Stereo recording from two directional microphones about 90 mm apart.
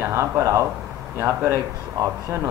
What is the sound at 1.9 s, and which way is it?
Speech, 35° right (ahead or behind).